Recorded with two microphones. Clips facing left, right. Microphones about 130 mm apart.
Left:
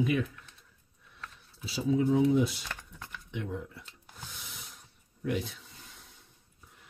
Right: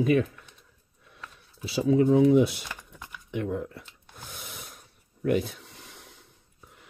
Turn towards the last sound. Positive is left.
turn(degrees=-70)  # may be behind; listen again after turning